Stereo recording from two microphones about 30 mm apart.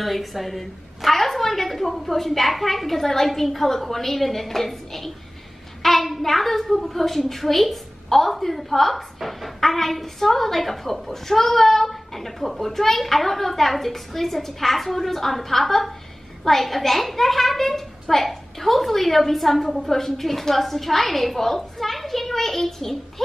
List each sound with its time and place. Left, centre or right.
0.0 s a woman's voice: centre